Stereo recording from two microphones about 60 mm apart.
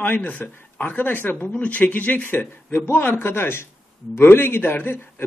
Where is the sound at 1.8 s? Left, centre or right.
Left.